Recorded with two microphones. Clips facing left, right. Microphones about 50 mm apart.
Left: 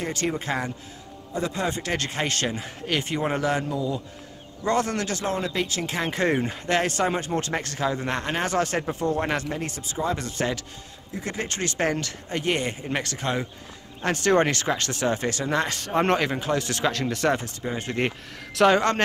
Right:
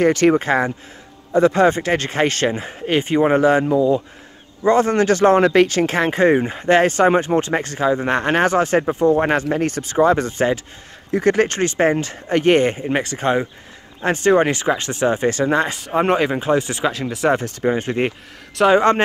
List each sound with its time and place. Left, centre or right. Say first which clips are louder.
0.0 s speech: right 13 dB; right
5.1 s speech: right 18 dB; right
6.1 s speech: right 7 dB; right
8.5 s speech: right 8 dB; right
11.1 s speech: right 15 dB; right
11.6 s speech: right 8 dB; right
12.3 s speech: right 12 dB; right
12.8 s speech: right 8 dB; right
15.8 s speech: right 5 dB; centre
17.6 s speech: right 9 dB; right
18.0 s speech: right 5 dB; centre